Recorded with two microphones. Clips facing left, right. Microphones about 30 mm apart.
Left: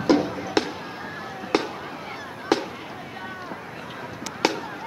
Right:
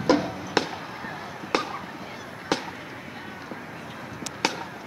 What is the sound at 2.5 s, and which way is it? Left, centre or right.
Fireworks, centre.